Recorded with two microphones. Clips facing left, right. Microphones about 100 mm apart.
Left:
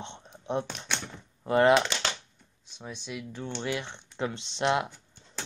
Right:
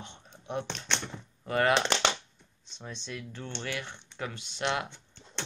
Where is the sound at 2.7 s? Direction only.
10° left (ahead or behind); by 4.8 s 25° left (ahead or behind).